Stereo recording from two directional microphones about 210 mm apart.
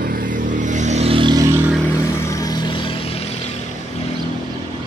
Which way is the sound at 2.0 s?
15° left (ahead or behind).